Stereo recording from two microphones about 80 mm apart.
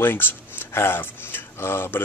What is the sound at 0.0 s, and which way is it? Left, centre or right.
Speech, left.